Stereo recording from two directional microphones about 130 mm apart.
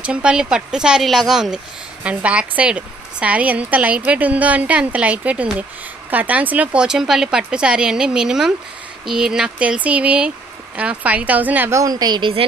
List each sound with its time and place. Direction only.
0.0 s a woman's voice: 10° right (ahead or behind)
11.8 s a woman's voice: 30° right (ahead or behind)